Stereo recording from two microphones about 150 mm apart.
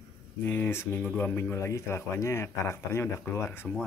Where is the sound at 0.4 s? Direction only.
15° left (ahead or behind).